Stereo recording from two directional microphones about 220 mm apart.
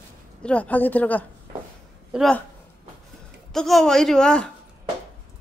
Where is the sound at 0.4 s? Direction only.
5° left (ahead or behind).